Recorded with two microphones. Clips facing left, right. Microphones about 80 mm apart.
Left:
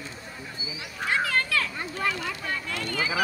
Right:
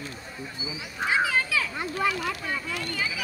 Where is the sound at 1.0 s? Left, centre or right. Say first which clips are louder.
Right 1 dB; centre.